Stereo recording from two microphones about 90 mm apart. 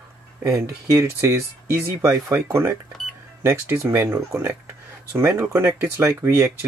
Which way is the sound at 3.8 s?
35° right (ahead or behind).